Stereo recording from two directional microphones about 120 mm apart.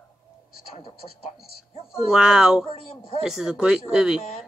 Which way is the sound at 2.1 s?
5° right (ahead or behind).